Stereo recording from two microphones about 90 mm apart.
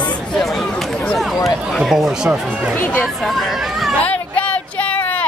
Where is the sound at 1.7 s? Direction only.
5° right (ahead or behind).